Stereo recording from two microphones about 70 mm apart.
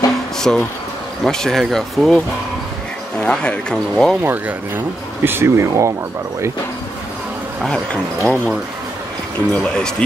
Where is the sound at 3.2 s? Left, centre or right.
Centre.